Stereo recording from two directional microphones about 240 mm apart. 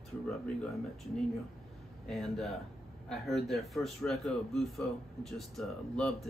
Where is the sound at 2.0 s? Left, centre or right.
Centre.